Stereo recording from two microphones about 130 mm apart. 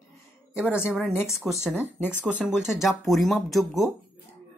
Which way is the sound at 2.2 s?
5° right (ahead or behind).